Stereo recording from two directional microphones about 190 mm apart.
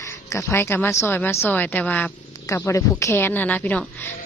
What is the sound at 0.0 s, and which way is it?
A woman's voice, 15° left (ahead or behind).